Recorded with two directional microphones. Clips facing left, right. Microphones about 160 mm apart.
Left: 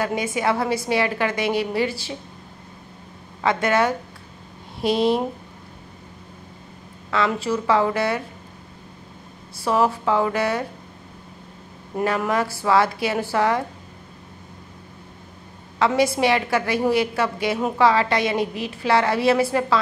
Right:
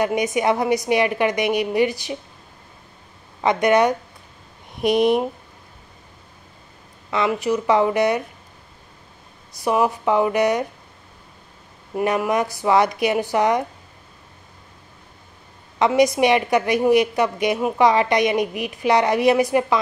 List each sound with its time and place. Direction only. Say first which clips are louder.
0.0 s a woman's voice: right 3 dB; 20° right (ahead or behind)
3.3 s a woman's voice: right 3 dB; 15° right (ahead or behind)
7.1 s a woman's voice: right 2 dB; 15° right (ahead or behind)
9.5 s a woman's voice: right 1 dB; 15° right (ahead or behind)
12.0 s a woman's voice: right 2 dB; 20° right (ahead or behind)
15.8 s a woman's voice: right 3 dB; 15° right (ahead or behind)